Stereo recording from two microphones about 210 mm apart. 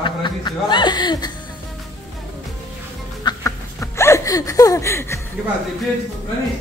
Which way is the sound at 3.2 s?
15° left (ahead or behind).